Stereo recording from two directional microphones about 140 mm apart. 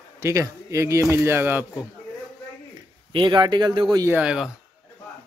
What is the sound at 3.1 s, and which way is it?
Speech, 35° right (ahead or behind).